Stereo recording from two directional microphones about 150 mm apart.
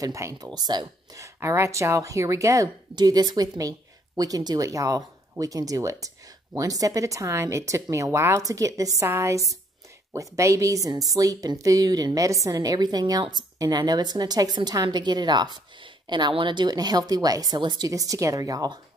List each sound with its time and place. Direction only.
0.0 s speech: 20° right (ahead or behind)